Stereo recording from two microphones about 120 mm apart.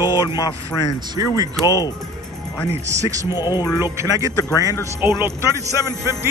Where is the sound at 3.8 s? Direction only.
25° right (ahead or behind).